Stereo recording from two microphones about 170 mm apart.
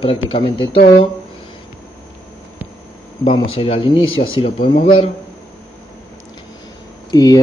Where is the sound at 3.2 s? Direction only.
35° left (ahead or behind).